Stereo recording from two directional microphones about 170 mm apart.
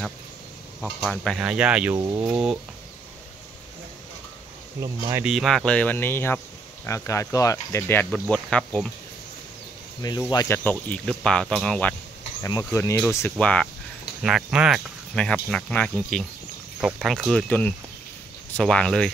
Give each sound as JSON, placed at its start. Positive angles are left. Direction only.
{"t": 0.7, "sound": "speech", "side_deg": 5}
{"t": 2.0, "sound": "speech", "side_deg": -25}
{"t": 2.3, "sound": "speech", "side_deg": -10}
{"t": 5.2, "sound": "speech", "side_deg": 0}
{"t": 10.2, "sound": "speech", "side_deg": 15}
{"t": 12.4, "sound": "speech", "side_deg": 15}
{"t": 14.2, "sound": "speech", "side_deg": -5}